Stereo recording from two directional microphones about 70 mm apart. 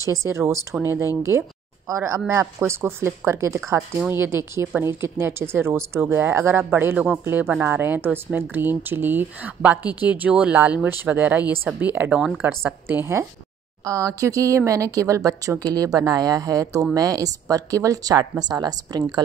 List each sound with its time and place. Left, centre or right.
0.0 s speech: right
1.9 s speech: right
13.8 s speech: right
18.4 s speech: right